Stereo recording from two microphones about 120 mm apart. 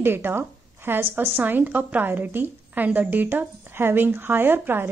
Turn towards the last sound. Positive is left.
turn(degrees=-15)  # may be behind; listen again after turning